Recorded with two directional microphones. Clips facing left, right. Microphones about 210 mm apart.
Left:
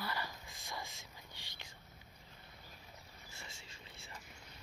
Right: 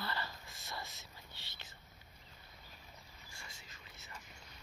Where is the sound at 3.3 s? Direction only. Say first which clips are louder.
Left 2 dB; 25° left (ahead or behind).